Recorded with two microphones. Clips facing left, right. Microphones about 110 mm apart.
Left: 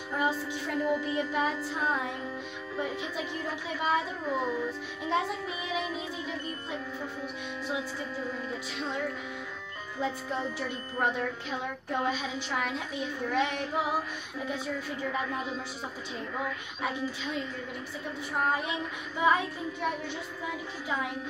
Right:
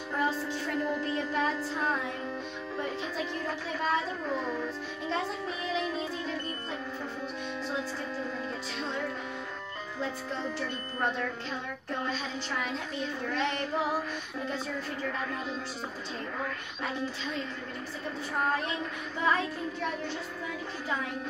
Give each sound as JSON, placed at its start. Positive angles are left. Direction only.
{"t": 0.1, "sound": "music", "side_deg": 15}
{"t": 2.8, "sound": "a woman's voice", "side_deg": 10}
{"t": 8.5, "sound": "a woman's voice", "side_deg": 10}
{"t": 16.8, "sound": "a woman's voice", "side_deg": 10}
{"t": 18.6, "sound": "a woman's voice", "side_deg": 10}